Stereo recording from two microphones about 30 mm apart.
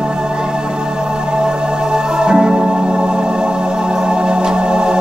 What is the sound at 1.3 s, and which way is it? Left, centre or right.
Music, right.